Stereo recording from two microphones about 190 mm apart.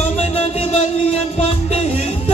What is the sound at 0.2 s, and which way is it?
Music, 35° left (ahead or behind).